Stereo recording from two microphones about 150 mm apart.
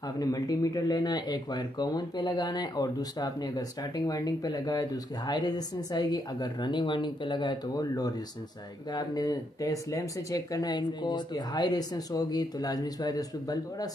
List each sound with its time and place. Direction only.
0.2 s speech: 25° left (ahead or behind)